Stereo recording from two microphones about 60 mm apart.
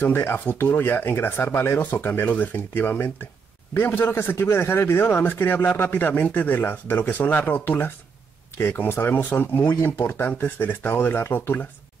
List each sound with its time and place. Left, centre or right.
0.0 s speech: left